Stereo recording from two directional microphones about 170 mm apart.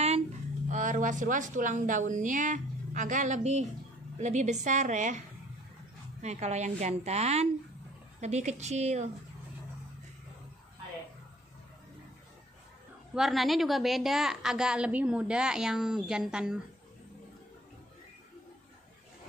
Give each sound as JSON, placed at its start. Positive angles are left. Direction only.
{"t": 0.7, "sound": "a woman's voice", "side_deg": -50}
{"t": 6.2, "sound": "a woman's voice", "side_deg": -40}
{"t": 13.1, "sound": "a woman's voice", "side_deg": 0}